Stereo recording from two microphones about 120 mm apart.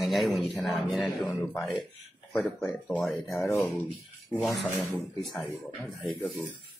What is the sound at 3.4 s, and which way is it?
Speech, 20° left (ahead or behind).